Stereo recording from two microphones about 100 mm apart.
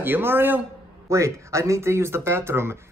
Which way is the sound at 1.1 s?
30° right (ahead or behind).